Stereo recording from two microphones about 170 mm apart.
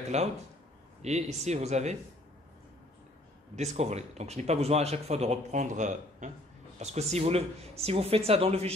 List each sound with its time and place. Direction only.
0.1 s speech: 40° right (ahead or behind)
3.5 s speech: 40° right (ahead or behind)